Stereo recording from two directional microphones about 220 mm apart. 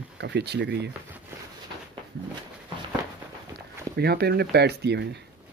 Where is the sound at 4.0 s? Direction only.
45° right (ahead or behind).